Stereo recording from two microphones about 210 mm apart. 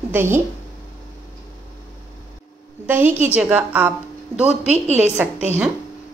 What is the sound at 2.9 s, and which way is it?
A woman's voice, 10° right (ahead or behind).